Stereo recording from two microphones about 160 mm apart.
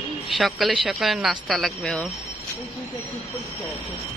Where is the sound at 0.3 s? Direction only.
Centre (ahead or behind).